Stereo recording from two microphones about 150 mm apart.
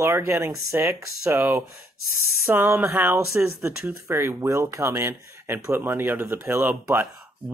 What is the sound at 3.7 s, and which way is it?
Speech, 5° right (ahead or behind).